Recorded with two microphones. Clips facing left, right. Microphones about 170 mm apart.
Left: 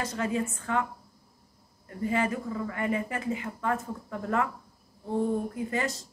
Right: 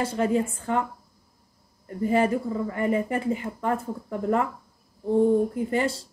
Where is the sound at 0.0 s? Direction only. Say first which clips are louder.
Right 6 dB; 30° right (ahead or behind).